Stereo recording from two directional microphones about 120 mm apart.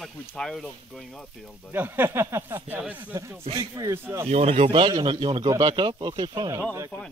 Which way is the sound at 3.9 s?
20° right (ahead or behind).